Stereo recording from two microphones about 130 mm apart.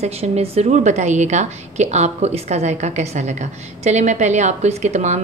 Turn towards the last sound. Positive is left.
turn(degrees=-65)  # may be behind; listen again after turning